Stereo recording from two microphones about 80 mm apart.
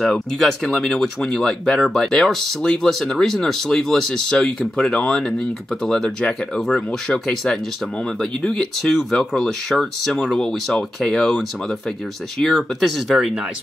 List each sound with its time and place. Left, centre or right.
0.0 s speech: centre